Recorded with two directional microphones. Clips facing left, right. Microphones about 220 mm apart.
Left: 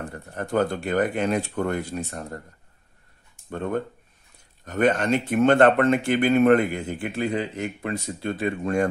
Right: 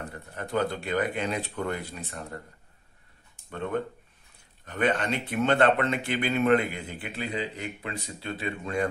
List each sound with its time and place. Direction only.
0.1 s speech: 45° left (ahead or behind)
3.4 s speech: 45° left (ahead or behind)